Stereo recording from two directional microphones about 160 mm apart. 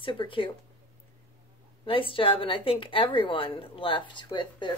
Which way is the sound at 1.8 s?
35° left (ahead or behind).